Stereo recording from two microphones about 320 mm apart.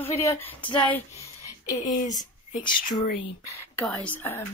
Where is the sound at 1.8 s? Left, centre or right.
Left.